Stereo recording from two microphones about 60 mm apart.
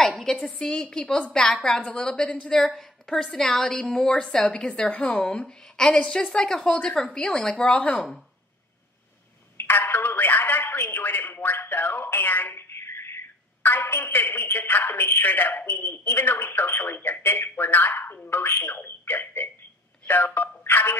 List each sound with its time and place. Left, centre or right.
0.0 s a woman's voice: centre
1.8 s a woman's voice: left
9.6 s a man's voice: left
18.4 s speech: left